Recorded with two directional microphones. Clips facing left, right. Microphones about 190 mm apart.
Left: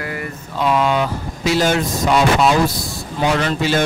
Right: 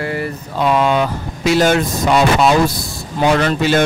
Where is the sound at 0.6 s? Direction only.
55° right (ahead or behind).